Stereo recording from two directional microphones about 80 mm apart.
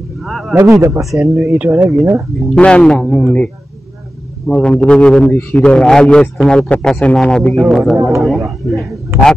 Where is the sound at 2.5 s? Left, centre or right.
Centre.